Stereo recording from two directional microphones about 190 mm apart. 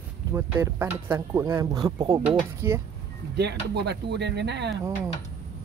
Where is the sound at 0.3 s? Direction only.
15° right (ahead or behind).